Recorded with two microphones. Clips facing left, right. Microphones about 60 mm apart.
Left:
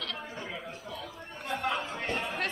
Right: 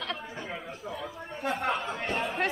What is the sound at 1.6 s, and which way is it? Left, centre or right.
Speech, right.